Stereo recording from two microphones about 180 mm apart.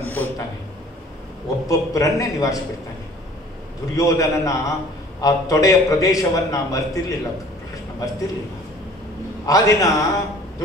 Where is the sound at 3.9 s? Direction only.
20° left (ahead or behind).